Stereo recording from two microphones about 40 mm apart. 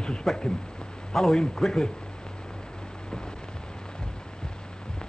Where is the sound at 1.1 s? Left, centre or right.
Centre.